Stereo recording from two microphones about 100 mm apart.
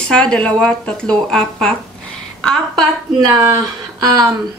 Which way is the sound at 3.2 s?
40° right (ahead or behind).